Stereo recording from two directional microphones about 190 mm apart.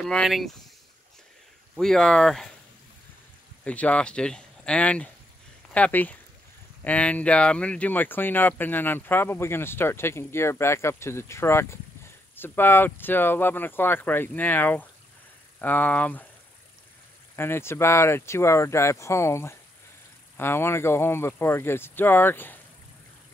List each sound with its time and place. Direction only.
0.0 s speech: centre (ahead or behind)
1.8 s speech: 5° left (ahead or behind)
3.6 s speech: 5° left (ahead or behind)
17.4 s speech: 10° left (ahead or behind)